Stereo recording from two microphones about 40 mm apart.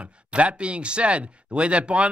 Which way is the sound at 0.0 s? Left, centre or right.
Right.